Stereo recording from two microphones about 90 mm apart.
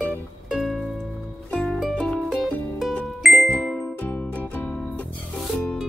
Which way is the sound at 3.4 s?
10° left (ahead or behind).